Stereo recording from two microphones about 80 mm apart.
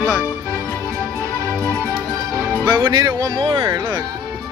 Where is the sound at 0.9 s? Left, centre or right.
Right.